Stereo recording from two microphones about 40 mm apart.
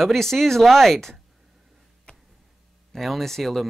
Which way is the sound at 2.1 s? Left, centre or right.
Left.